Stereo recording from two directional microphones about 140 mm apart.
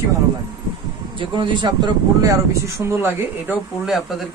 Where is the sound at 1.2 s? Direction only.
35° right (ahead or behind); by 3.5 s 15° right (ahead or behind).